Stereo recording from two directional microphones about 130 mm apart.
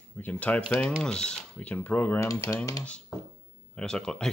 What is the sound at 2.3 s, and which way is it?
Typing, 25° left (ahead or behind).